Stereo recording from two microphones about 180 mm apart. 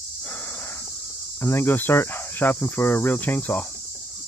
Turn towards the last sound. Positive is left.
turn(degrees=10)  # may be behind; listen again after turning